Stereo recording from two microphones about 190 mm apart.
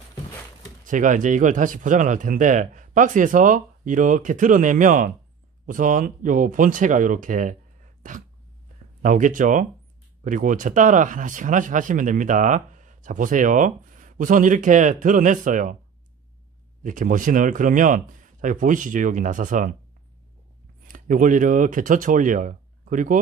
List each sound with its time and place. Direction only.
0.8 s speech: 40° right (ahead or behind)
16.8 s speech: 45° right (ahead or behind)
20.8 s speech: 45° right (ahead or behind)